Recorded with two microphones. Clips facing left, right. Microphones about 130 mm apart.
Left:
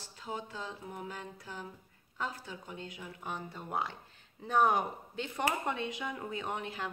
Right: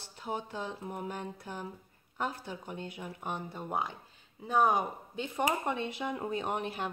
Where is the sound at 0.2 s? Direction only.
20° right (ahead or behind).